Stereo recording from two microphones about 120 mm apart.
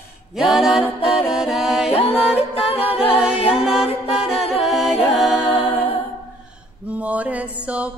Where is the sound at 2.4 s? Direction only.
55° left (ahead or behind).